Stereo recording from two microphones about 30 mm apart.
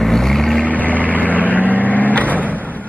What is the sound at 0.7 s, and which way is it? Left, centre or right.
Vehicle, left.